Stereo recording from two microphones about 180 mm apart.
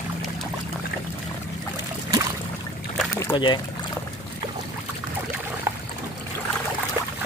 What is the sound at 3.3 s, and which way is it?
Speech, 25° left (ahead or behind).